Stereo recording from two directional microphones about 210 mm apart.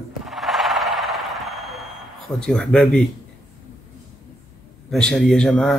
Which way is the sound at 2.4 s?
5° left (ahead or behind).